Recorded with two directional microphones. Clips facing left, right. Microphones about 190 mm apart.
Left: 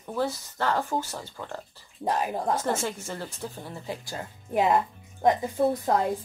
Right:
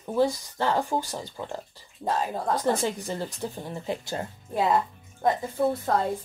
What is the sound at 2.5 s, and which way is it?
Speech, 15° right (ahead or behind).